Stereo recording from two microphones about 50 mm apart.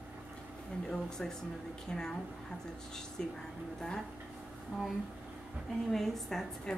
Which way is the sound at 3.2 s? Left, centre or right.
Centre.